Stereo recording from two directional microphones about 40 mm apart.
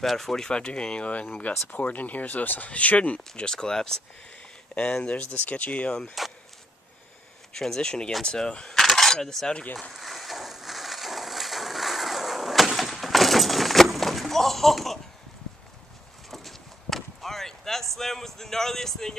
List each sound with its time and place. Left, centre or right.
0.0 s speech: centre
0.5 s speech: left
1.5 s speech: left
3.5 s speech: centre
4.7 s speech: left
6.2 s speech: centre
7.5 s speech: centre
8.7 s coin: centre
9.9 s a sound: centre
16.3 s a sound: centre